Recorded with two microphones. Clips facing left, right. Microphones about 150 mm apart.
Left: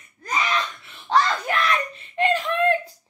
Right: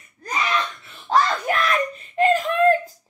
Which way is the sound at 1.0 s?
40° right (ahead or behind).